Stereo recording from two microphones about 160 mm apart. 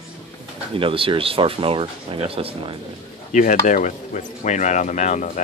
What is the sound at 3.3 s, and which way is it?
Speech, 55° left (ahead or behind).